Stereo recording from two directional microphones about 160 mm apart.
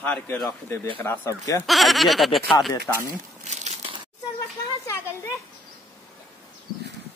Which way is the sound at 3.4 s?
45° right (ahead or behind).